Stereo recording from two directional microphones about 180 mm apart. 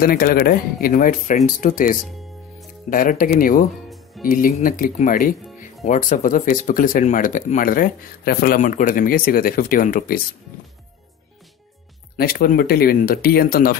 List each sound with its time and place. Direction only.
0.0 s speech: 55° left (ahead or behind)
3.9 s music: centre (ahead or behind)
4.3 s speech: 50° left (ahead or behind)
12.2 s speech: 55° left (ahead or behind)